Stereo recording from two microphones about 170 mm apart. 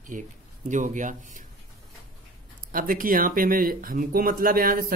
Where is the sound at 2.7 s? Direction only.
55° right (ahead or behind).